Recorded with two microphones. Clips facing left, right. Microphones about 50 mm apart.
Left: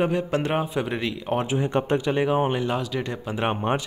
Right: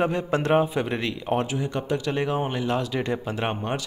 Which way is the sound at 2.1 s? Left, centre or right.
Centre.